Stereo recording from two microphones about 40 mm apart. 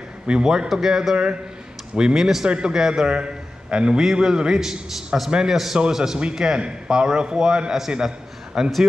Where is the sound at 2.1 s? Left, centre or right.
Centre.